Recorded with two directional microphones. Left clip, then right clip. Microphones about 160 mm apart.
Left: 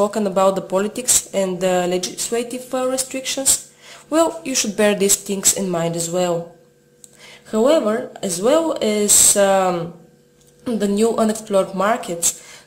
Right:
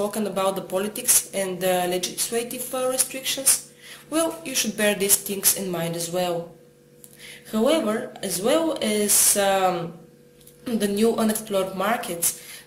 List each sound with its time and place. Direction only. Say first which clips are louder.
0.1 s speech: left 8 dB; 45° left (ahead or behind)
7.5 s speech: left 6 dB; 40° left (ahead or behind)